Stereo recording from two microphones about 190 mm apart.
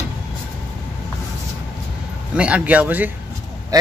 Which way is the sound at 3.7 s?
20° right (ahead or behind).